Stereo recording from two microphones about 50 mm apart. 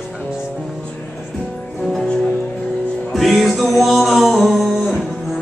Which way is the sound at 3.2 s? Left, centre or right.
Centre.